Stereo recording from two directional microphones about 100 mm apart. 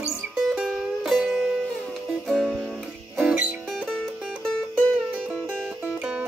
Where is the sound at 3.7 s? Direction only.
5° left (ahead or behind).